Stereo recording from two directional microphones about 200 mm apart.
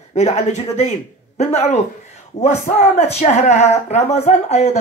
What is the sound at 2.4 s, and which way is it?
Speech, 35° left (ahead or behind).